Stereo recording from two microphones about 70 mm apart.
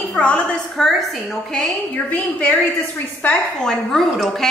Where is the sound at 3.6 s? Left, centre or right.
Centre.